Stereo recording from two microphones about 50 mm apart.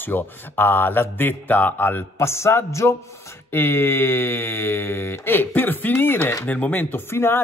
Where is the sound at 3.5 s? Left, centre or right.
Left.